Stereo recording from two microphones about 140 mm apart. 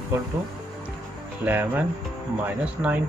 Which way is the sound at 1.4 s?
15° right (ahead or behind).